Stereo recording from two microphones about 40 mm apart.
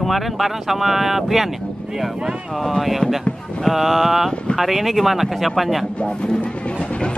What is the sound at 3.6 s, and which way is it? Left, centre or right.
Speech, centre.